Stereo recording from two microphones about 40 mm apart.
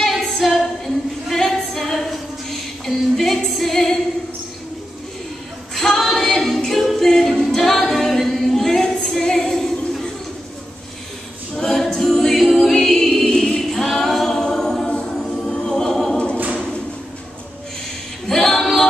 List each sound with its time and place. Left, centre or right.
0.1 s a capella: centre
2.8 s female singing: centre
5.8 s a capella: centre
11.5 s a capella: centre
18.2 s a capella: centre